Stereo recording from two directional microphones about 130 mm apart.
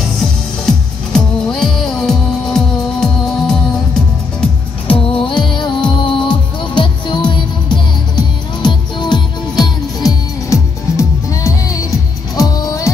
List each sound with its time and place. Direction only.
0.0 s music: 5° left (ahead or behind)
4.8 s music: 45° left (ahead or behind); by 12.9 s 25° left (ahead or behind)